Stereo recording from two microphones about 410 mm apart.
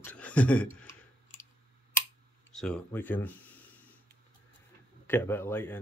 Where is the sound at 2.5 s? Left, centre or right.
Centre.